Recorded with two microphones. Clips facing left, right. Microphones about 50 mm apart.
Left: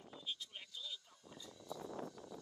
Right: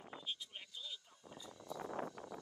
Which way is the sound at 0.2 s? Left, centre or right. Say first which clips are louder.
Left 2 dB; centre.